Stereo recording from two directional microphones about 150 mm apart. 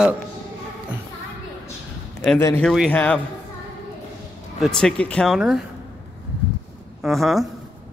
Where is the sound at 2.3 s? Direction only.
15° left (ahead or behind).